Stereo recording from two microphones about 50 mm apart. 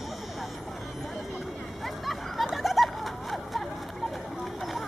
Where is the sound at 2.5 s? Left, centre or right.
Centre.